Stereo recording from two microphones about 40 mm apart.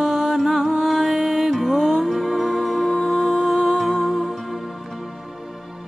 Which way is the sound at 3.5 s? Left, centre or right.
Centre.